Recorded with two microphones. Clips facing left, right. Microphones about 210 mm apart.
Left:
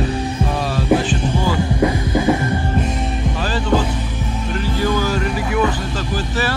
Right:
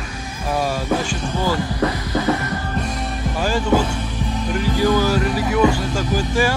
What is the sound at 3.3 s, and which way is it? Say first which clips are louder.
Music: right 2 dB; 10° right (ahead or behind).